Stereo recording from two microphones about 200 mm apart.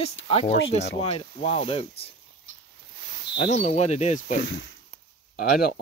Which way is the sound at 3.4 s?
35° left (ahead or behind).